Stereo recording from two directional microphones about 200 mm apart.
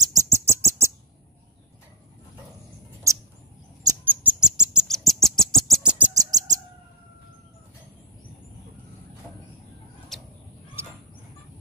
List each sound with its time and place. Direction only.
0.0 s rodents: 15° right (ahead or behind)
3.9 s bird: 10° right (ahead or behind)
6.1 s bird: 20° right (ahead or behind)
10.1 s a sound: centre (ahead or behind)
10.8 s fowl: 10° right (ahead or behind)